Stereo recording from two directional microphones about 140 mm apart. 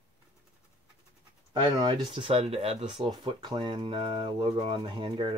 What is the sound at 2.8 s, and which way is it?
Speech, 35° right (ahead or behind).